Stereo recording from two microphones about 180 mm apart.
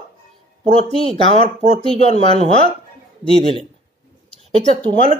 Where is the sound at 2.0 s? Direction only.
35° left (ahead or behind).